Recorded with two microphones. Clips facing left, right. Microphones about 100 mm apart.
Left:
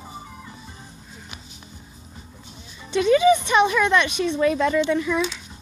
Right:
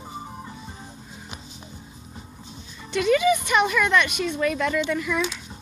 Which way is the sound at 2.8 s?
20° left (ahead or behind).